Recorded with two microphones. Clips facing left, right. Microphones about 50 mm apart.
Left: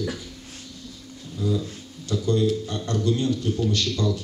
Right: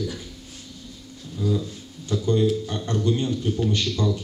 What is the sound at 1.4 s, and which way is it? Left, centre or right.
Speech, centre.